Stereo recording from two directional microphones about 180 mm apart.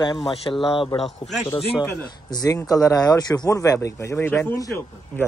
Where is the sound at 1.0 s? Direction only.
Centre (ahead or behind).